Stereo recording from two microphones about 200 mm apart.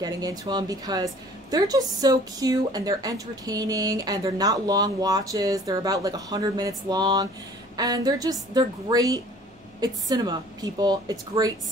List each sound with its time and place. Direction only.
0.0 s a woman's voice: 20° right (ahead or behind)